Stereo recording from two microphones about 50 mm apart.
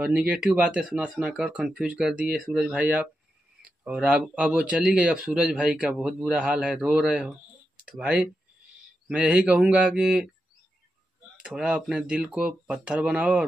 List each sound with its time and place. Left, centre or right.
0.1 s speech: right
1.6 s speech: right
2.7 s speech: right
11.3 s speech: right